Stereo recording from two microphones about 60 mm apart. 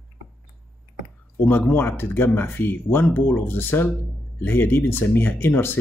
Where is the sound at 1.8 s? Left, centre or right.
Left.